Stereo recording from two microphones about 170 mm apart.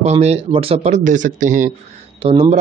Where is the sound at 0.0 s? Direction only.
40° right (ahead or behind).